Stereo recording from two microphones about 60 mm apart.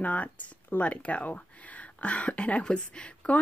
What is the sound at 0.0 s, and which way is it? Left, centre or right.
Speech, left.